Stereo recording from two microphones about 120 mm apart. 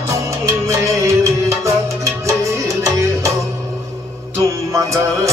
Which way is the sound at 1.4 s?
25° right (ahead or behind).